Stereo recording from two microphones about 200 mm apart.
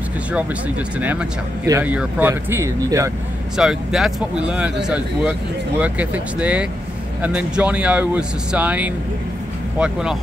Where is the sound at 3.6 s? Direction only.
Centre (ahead or behind).